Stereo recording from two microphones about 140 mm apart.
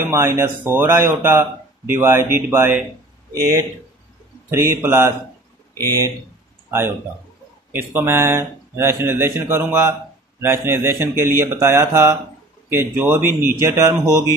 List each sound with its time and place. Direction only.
0.0 s speech: 15° right (ahead or behind)
4.5 s speech: 15° right (ahead or behind)
7.7 s speech: 15° right (ahead or behind)